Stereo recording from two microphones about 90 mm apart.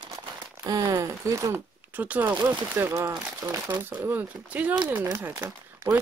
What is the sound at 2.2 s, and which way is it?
Speech, 55° right (ahead or behind).